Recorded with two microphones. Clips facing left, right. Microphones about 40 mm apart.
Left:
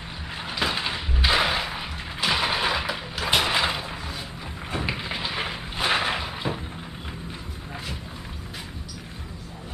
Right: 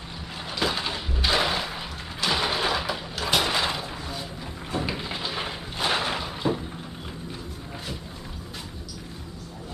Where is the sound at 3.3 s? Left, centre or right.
Centre.